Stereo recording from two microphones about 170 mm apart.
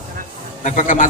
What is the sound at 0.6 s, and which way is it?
Speech, 50° left (ahead or behind).